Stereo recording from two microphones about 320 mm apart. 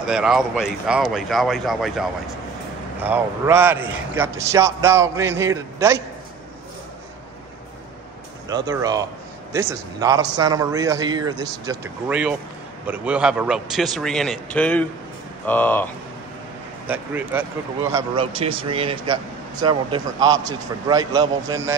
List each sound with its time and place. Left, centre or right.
0.0 s a man's voice: centre
8.5 s a man's voice: centre
16.8 s speech: centre